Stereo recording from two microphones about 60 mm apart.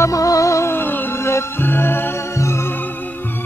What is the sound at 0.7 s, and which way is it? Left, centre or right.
Music, left.